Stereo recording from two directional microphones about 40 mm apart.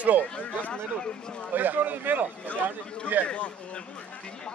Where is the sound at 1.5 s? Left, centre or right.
Right.